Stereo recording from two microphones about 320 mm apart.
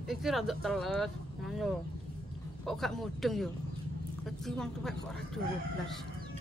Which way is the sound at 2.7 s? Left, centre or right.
Centre.